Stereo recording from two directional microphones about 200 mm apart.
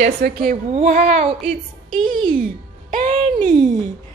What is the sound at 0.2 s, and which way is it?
Speech, 45° right (ahead or behind).